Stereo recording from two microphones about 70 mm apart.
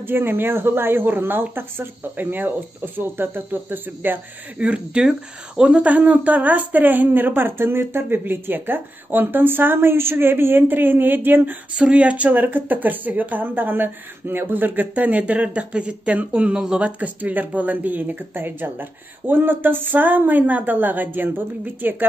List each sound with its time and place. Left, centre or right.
0.0 s speech: right
4.6 s speech: centre
11.8 s speech: centre